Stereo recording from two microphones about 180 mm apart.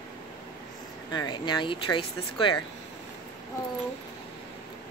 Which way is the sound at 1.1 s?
25° left (ahead or behind).